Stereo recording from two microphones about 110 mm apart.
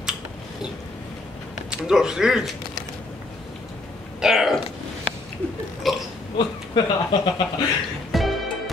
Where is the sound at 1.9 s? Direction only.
5° right (ahead or behind).